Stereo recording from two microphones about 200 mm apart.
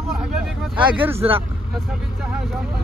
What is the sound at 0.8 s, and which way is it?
Speech, 10° right (ahead or behind).